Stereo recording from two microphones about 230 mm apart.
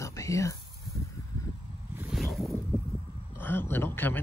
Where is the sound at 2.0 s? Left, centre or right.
Centre.